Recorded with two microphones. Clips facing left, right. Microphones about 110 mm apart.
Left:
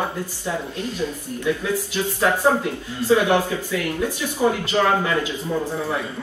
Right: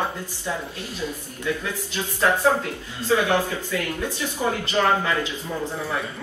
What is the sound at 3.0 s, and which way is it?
Speech, 15° left (ahead or behind).